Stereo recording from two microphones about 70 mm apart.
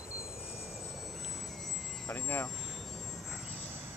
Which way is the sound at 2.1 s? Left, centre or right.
Left.